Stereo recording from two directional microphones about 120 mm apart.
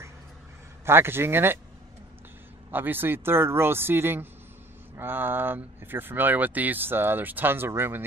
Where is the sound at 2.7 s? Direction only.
15° right (ahead or behind).